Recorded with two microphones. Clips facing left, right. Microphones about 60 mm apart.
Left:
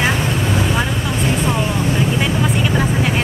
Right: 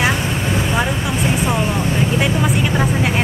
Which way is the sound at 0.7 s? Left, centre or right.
Centre.